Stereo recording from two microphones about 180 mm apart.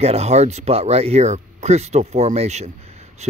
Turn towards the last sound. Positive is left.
turn(degrees=-35)  # may be behind; listen again after turning